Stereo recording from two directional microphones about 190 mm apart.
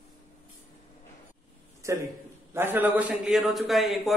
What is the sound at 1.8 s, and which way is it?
A man's voice, 15° right (ahead or behind).